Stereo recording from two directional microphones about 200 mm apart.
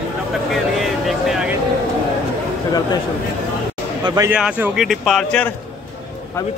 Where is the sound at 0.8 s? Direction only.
Centre (ahead or behind).